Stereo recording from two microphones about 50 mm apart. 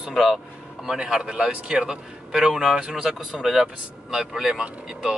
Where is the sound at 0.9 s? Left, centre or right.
Centre.